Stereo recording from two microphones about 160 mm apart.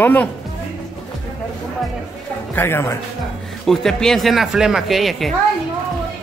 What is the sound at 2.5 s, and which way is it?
Speech, 15° left (ahead or behind).